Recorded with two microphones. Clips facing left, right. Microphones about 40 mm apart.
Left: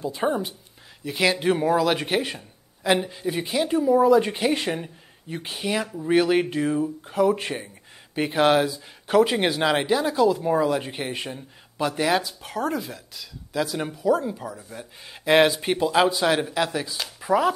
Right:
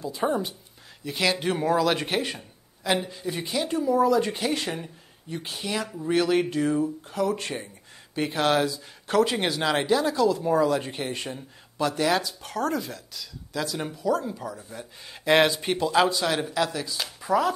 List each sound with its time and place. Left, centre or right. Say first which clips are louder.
0.0 s a woman's voice: left 2 dB; left
0.3 s a woman's voice: left 1 dB; centre